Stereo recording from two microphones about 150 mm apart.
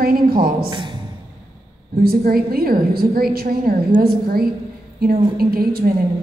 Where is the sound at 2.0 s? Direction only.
90° right.